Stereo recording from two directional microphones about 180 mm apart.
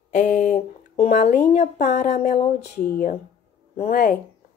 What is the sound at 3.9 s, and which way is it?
Speech, 60° left (ahead or behind).